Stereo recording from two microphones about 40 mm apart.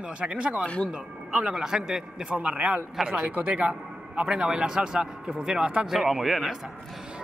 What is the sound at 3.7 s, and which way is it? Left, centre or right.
A man's voice, right.